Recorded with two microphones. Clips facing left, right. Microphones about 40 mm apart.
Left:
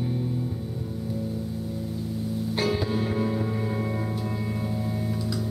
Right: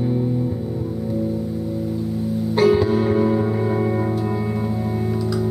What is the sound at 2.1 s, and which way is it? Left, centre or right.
Music, centre.